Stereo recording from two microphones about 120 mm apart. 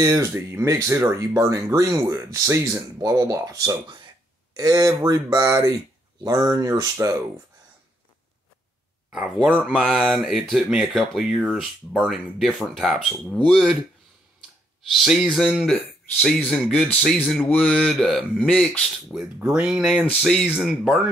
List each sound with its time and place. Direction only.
0.0 s speech: 25° right (ahead or behind)
9.1 s speech: 10° right (ahead or behind)
14.9 s speech: centre (ahead or behind)
20.1 s speech: 10° left (ahead or behind)
20.6 s speech: 5° right (ahead or behind)